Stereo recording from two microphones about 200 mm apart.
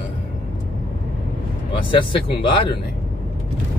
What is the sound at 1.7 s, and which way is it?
Speech, 25° left (ahead or behind).